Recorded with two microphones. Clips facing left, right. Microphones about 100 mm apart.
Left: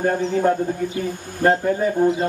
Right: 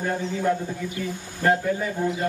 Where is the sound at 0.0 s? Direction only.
50° left (ahead or behind).